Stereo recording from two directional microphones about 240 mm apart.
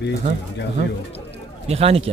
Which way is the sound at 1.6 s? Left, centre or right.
Right.